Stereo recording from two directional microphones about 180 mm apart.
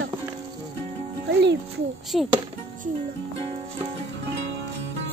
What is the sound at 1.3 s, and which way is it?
Music, 75° right (ahead or behind).